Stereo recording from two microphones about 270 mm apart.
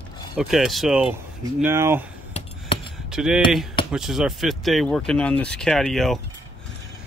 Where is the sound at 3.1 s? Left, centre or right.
Centre.